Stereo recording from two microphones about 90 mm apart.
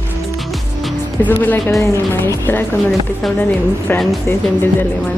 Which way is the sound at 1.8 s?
30° left (ahead or behind).